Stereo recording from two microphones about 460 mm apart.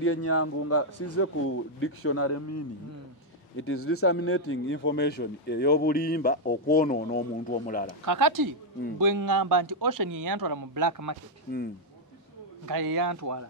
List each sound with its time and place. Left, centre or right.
0.0 s a man's voice: left
8.0 s speech: right
12.6 s speech: right